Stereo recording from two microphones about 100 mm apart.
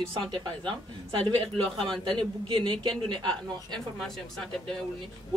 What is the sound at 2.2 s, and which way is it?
A woman's voice, 55° right (ahead or behind).